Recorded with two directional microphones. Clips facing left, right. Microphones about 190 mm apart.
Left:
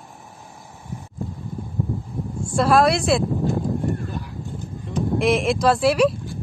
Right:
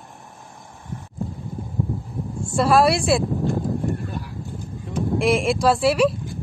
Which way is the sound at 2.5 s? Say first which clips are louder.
Even; 5° right (ahead or behind).